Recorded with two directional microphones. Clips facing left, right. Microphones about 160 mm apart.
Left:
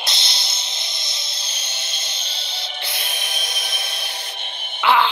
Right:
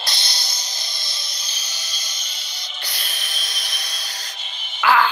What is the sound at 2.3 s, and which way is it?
Music, 60° left (ahead or behind).